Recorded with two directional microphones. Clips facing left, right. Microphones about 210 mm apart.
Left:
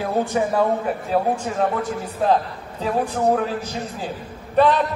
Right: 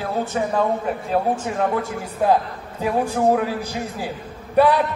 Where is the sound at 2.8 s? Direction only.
10° right (ahead or behind).